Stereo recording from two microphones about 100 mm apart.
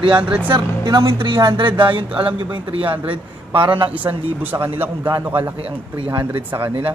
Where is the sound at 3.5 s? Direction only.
55° right (ahead or behind).